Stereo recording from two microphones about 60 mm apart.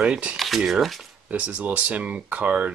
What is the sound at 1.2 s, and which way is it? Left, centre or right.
Speech, right.